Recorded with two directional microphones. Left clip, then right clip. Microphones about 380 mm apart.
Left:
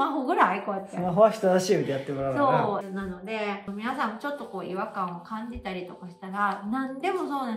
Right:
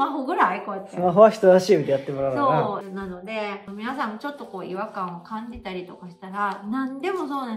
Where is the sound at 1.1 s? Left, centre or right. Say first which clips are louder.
Right 6 dB; right.